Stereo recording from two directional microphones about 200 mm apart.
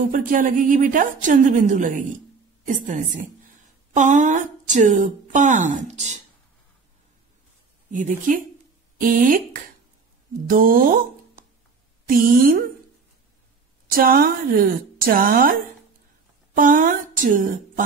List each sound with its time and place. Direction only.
0.0 s a woman's voice: 40° right (ahead or behind)
7.9 s a woman's voice: 40° right (ahead or behind)
13.8 s a woman's voice: 45° right (ahead or behind)